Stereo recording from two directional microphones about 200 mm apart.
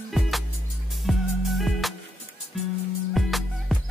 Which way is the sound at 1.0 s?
Centre (ahead or behind).